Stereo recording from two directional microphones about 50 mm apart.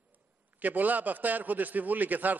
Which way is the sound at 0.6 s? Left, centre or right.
Right.